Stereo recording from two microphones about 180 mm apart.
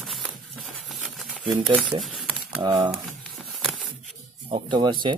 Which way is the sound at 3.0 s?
Centre (ahead or behind).